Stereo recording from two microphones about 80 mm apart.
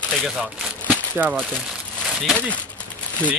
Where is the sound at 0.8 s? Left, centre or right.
Right.